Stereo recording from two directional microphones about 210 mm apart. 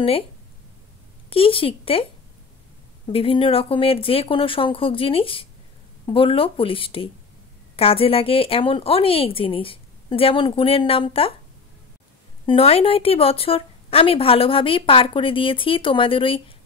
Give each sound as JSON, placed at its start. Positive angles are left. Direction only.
{"t": 1.3, "sound": "speech", "side_deg": 25}
{"t": 3.1, "sound": "speech", "side_deg": 25}
{"t": 12.4, "sound": "speech", "side_deg": 25}